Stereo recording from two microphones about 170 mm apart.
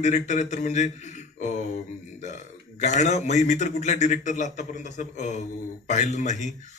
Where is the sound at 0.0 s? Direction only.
45° left (ahead or behind).